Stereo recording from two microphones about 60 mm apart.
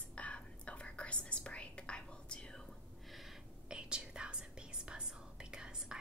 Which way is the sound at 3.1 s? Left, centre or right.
Centre.